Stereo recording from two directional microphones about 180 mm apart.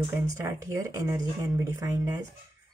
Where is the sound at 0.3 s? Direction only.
15° right (ahead or behind).